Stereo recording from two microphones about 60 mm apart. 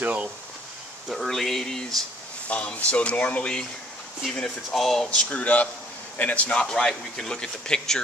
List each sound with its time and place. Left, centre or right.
0.0 s speech: right
1.0 s speech: centre
2.4 s speech: left
4.6 s speech: centre
5.0 s speech: left